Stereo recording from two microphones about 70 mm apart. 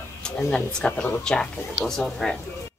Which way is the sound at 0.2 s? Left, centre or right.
Centre.